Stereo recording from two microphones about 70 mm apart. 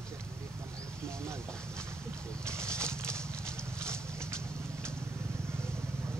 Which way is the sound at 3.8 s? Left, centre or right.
Right.